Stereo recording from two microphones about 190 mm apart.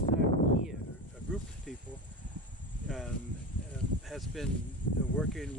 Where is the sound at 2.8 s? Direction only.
Centre (ahead or behind).